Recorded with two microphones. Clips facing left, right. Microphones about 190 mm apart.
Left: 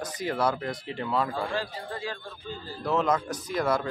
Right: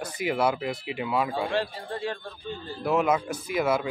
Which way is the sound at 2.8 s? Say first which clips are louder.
Right 2 dB; 10° right (ahead or behind).